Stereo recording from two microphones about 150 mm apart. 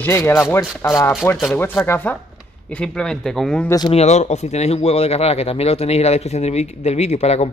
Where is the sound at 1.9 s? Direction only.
10° left (ahead or behind).